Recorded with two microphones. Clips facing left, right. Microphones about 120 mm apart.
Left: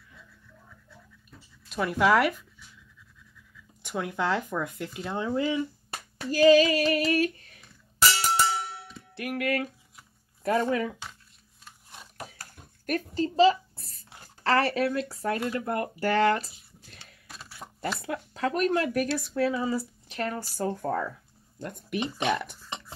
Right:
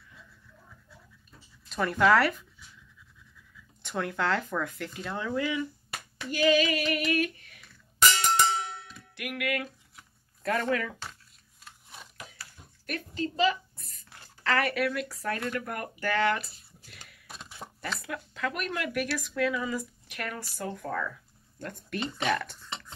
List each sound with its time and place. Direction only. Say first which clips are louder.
1.7 s speech: even; 10° left (ahead or behind)
3.8 s speech: left 1 dB; 10° left (ahead or behind); by 7.6 s 35° left (ahead or behind)
8.9 s music: left 5 dB; 35° left (ahead or behind)
10.4 s speech: left 3 dB; 20° left (ahead or behind)
11.6 s a sound: even; centre (ahead or behind)
12.2 s a sound: left 4 dB; 45° left (ahead or behind)
14.2 s speech: left 4 dB; 35° left (ahead or behind)
17.6 s a sound: right 1 dB; centre (ahead or behind)
17.9 s speech: left 3 dB; 30° left (ahead or behind)
21.6 s speech: left 3 dB; 15° left (ahead or behind)